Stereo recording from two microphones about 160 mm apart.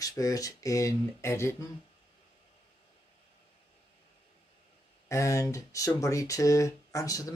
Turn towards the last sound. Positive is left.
turn(degrees=20)  # may be behind; listen again after turning